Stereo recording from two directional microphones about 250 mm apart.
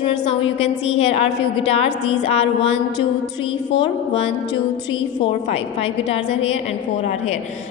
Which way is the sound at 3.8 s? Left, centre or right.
Left.